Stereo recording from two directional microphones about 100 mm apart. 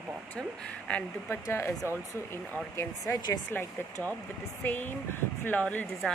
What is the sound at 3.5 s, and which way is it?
Speech, 20° left (ahead or behind).